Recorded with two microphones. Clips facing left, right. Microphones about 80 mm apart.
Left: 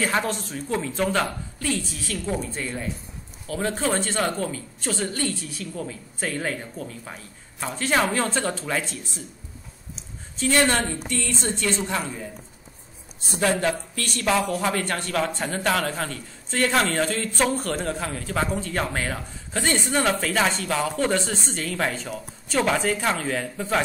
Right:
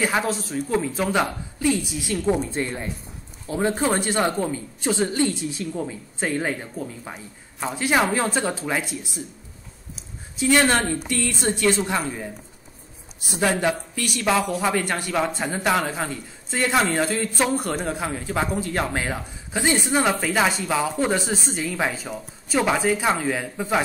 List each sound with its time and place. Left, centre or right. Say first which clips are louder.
0.2 s a woman's voice: right 3 dB; centre
10.3 s a woman's voice: right 2 dB; centre
10.7 s a woman's voice: right 3 dB; centre
13.4 s a woman's voice: right 1 dB; centre